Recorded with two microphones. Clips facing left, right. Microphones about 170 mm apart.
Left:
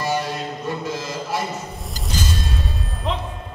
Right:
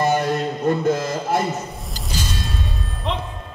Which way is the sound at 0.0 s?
55° right (ahead or behind).